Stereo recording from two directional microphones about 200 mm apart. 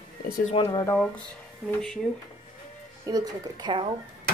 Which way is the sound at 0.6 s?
15° left (ahead or behind).